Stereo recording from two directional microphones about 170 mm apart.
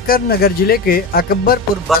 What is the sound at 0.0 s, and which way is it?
Speech, 60° left (ahead or behind).